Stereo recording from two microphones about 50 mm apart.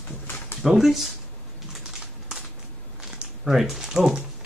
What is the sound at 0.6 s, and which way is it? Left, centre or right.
Speech, centre.